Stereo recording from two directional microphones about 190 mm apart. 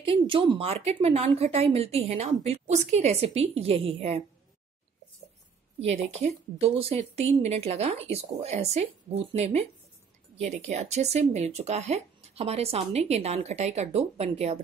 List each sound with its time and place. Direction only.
0.0 s speech: 30° right (ahead or behind)
5.8 s speech: 35° right (ahead or behind)